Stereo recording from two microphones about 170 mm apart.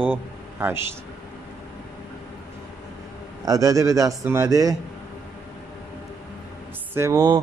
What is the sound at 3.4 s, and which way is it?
A man's voice, 20° right (ahead or behind).